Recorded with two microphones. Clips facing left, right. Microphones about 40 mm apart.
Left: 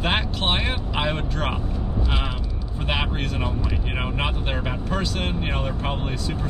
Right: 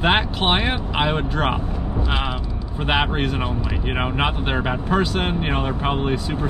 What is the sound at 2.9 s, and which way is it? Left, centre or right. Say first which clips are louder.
Speech: right 6 dB; centre.